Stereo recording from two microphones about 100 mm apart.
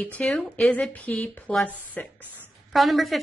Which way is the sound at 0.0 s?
10° left (ahead or behind).